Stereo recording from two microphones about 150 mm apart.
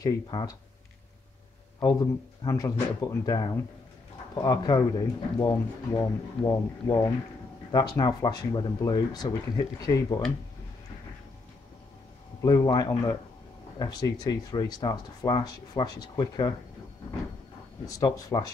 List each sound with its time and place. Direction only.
0.0 s speech: 25° left (ahead or behind)
2.4 s speech: 25° left (ahead or behind)
12.4 s speech: 25° left (ahead or behind)
17.8 s speech: 25° left (ahead or behind)